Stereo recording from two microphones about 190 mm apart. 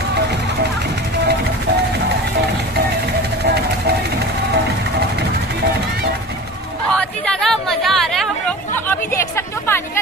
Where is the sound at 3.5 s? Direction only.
60° right (ahead or behind).